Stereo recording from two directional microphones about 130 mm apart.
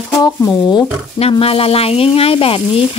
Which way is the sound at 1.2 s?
50° left (ahead or behind).